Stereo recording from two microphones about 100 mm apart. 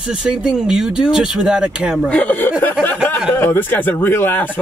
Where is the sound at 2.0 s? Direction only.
15° left (ahead or behind).